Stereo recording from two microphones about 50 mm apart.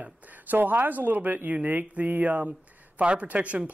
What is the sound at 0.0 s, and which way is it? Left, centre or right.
Speech, right.